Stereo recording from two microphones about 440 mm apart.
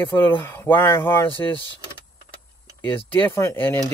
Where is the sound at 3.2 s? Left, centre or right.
Centre.